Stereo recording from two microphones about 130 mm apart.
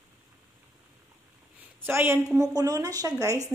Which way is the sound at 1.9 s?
20° right (ahead or behind).